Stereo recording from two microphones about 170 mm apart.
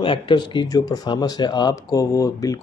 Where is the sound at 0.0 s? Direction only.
30° left (ahead or behind).